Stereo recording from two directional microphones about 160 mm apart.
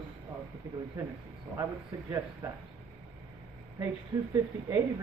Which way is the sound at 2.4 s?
10° right (ahead or behind).